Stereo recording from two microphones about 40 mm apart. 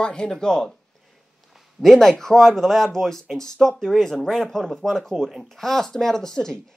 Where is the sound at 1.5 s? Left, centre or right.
Centre.